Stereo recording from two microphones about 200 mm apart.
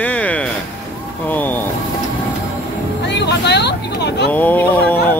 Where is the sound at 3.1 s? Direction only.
55° left (ahead or behind).